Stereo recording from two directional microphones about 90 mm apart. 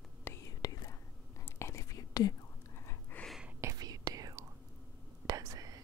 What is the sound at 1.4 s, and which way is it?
Whispering, 30° left (ahead or behind).